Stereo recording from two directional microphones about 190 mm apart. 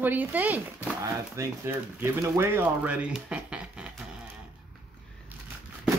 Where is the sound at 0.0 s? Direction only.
10° right (ahead or behind).